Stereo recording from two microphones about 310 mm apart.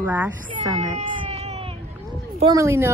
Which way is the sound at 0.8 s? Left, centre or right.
Right.